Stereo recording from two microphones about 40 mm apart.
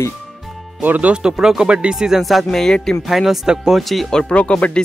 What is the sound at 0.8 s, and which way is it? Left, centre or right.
Speech, right.